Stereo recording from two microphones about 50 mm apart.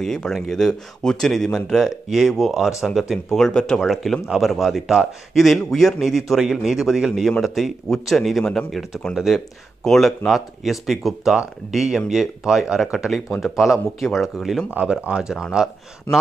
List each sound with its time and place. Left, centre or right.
0.0 s speech: centre
3.3 s speech: centre
3.8 s speech: centre
9.8 s speech: centre
14.7 s speech: right